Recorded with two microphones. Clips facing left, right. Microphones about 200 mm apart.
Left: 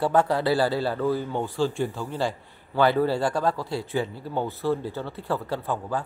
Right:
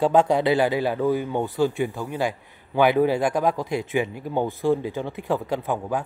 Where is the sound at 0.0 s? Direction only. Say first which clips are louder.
Right 3 dB; 15° right (ahead or behind).